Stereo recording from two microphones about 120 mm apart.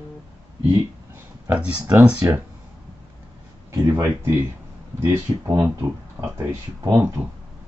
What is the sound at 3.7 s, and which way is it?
Speech, 25° right (ahead or behind).